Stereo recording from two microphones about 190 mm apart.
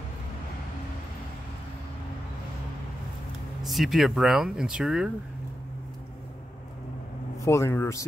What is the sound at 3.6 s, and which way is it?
Speech, centre (ahead or behind).